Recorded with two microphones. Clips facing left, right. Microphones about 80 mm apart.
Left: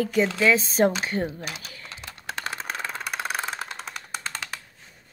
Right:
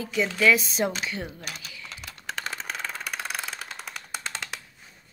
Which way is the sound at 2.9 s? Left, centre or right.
Left.